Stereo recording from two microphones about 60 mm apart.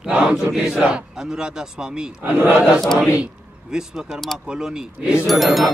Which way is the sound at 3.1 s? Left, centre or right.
Centre.